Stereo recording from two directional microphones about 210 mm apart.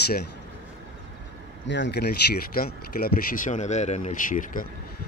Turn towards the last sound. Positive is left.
turn(degrees=40)  # may be behind; listen again after turning